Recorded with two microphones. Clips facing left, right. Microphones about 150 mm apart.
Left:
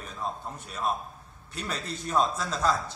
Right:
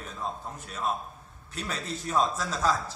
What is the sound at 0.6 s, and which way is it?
A man's voice, centre (ahead or behind).